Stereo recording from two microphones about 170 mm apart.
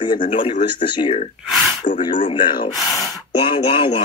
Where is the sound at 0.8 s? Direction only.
30° left (ahead or behind).